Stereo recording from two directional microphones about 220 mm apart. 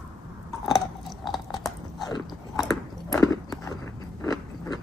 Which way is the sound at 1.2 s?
Centre (ahead or behind).